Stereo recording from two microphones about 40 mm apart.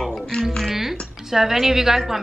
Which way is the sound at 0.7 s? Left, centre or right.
Centre.